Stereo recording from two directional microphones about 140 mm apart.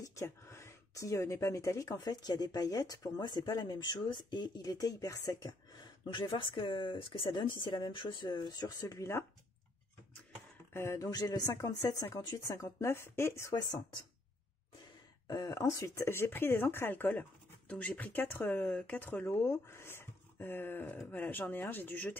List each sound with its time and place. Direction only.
0.0 s speech: 20° left (ahead or behind)
10.7 s speech: 20° left (ahead or behind)
15.2 s speech: 25° left (ahead or behind)